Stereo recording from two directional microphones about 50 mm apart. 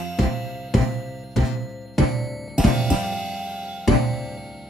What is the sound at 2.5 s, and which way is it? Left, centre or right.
Music, centre.